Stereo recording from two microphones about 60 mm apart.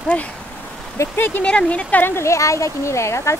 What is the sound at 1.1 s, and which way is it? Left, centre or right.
Speech, left.